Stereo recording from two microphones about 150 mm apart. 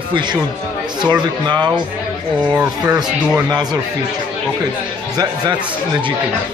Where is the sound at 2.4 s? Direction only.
10° right (ahead or behind).